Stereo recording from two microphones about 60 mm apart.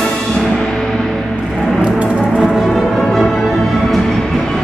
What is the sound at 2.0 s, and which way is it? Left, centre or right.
Music, centre.